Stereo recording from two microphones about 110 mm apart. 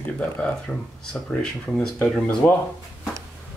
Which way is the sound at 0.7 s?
10° left (ahead or behind).